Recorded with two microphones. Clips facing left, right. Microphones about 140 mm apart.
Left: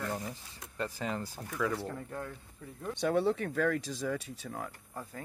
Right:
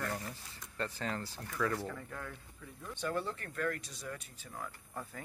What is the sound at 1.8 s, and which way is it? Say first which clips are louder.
Speech: left 3 dB; 25° left (ahead or behind).